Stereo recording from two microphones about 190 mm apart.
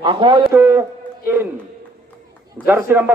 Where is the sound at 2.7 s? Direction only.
10° right (ahead or behind).